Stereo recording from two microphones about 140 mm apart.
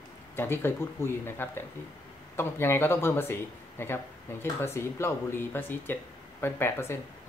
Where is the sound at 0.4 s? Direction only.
15° left (ahead or behind).